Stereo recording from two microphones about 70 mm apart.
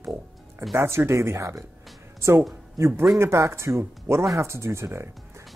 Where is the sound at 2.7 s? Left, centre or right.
Right.